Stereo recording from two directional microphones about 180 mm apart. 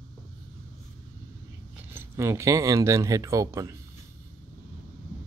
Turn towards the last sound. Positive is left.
turn(degrees=-20)  # may be behind; listen again after turning